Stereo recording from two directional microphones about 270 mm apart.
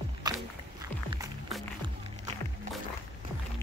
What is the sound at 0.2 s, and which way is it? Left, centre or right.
Walk, centre.